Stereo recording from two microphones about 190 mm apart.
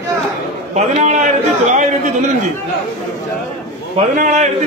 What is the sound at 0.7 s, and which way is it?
Speech, 40° right (ahead or behind).